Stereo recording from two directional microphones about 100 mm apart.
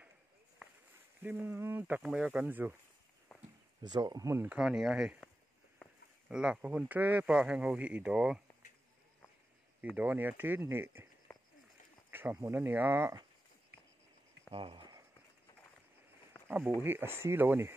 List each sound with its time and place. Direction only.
1.2 s speech: 20° right (ahead or behind)
3.8 s speech: 40° right (ahead or behind)
4.5 s speech: 5° right (ahead or behind)
6.2 s speech: 10° right (ahead or behind)
9.8 s speech: 15° right (ahead or behind)
12.1 s a sound: 20° right (ahead or behind)
12.4 s speech: 25° right (ahead or behind)
14.5 s a sound: 60° right (ahead or behind)
16.8 s speech: 20° right (ahead or behind)